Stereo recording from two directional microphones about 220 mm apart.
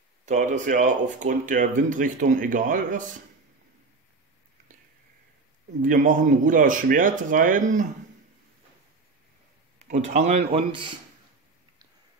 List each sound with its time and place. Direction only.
0.2 s speech: 35° right (ahead or behind)
5.8 s speech: 35° right (ahead or behind)
9.8 s speech: 30° right (ahead or behind)